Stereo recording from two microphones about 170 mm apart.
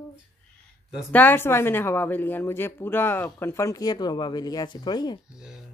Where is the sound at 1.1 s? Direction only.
10° left (ahead or behind).